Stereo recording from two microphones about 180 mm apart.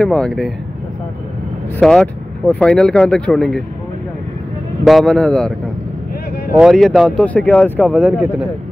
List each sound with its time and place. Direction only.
0.0 s speech: 5° left (ahead or behind)
1.8 s speech: 5° left (ahead or behind)
4.8 s speech: centre (ahead or behind)
6.5 s speech: centre (ahead or behind)